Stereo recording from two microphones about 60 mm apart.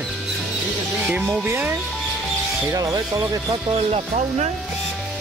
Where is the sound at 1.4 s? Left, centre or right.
Right.